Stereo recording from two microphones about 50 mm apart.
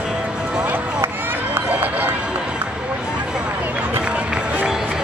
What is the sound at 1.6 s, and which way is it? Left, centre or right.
Run, right.